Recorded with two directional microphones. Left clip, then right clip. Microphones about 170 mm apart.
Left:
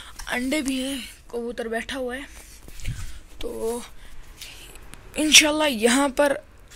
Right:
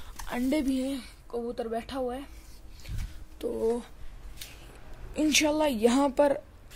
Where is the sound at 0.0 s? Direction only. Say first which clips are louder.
Left 5 dB; 5° right (ahead or behind).